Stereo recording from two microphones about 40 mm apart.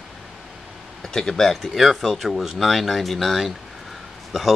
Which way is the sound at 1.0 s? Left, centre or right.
Centre.